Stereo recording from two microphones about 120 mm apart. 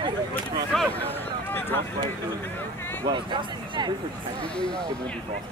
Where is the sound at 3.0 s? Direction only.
40° right (ahead or behind).